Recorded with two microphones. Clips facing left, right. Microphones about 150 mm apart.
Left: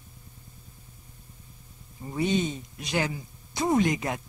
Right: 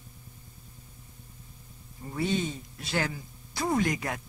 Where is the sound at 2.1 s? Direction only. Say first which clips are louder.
Left 3 dB; 20° left (ahead or behind).